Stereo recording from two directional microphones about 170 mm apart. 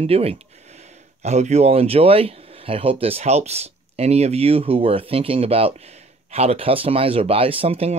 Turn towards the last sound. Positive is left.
turn(degrees=-35)  # may be behind; listen again after turning